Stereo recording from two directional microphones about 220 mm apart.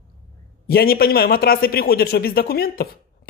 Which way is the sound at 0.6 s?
45° left (ahead or behind).